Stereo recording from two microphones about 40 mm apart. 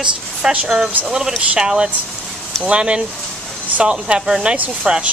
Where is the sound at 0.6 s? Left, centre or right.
Centre.